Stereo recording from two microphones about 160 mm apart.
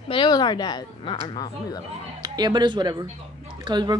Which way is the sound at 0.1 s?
30° left (ahead or behind).